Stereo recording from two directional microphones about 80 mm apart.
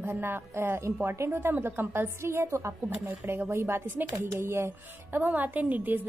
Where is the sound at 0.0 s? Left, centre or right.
Right.